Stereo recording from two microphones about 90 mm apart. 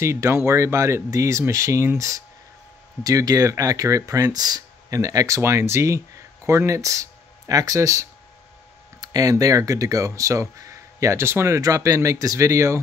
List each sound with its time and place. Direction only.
0.0 s speech: 30° right (ahead or behind)